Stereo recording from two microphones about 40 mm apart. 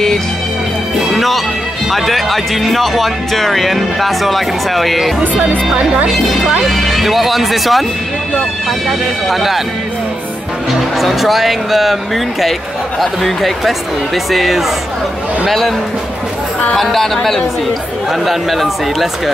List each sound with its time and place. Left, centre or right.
1.1 s music: centre
1.9 s speech: centre
9.3 s speech: centre
11.0 s speech: centre
16.7 s a woman's voice: centre